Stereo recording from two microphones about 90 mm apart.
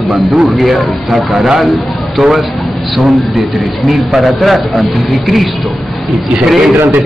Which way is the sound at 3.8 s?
Centre (ahead or behind).